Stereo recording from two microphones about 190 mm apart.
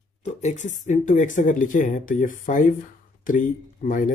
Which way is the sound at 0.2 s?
35° left (ahead or behind).